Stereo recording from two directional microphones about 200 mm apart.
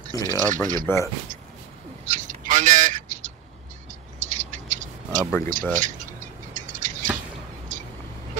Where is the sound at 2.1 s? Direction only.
40° right (ahead or behind).